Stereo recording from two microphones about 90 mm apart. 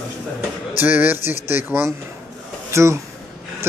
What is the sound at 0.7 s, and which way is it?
Speech, 20° right (ahead or behind).